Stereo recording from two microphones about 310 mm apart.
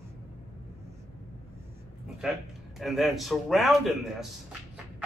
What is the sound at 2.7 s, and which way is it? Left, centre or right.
A man's voice, centre.